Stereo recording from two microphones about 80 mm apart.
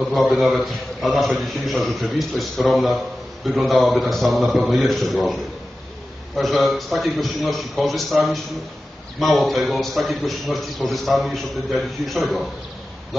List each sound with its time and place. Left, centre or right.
0.1 s a man's voice: centre